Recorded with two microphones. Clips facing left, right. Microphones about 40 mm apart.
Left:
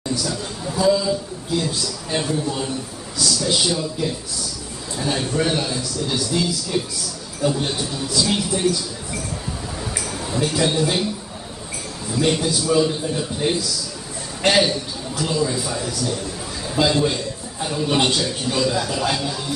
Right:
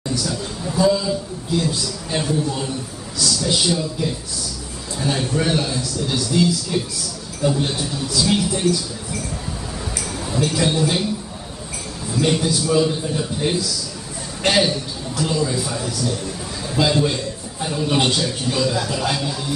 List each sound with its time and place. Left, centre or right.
0.1 s a sound: centre
1.6 s a man's voice: centre
10.3 s a man's voice: centre
12.2 s a man's voice: centre